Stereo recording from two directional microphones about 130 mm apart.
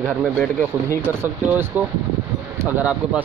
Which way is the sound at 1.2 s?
20° right (ahead or behind).